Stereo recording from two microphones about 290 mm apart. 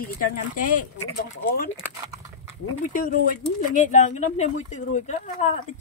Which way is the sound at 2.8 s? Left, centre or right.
Left.